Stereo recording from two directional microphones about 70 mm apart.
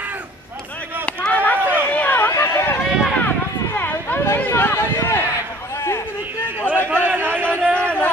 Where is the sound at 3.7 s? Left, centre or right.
Left.